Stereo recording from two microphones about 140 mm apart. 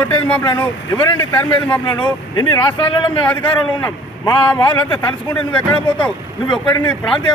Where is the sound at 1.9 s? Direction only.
30° left (ahead or behind).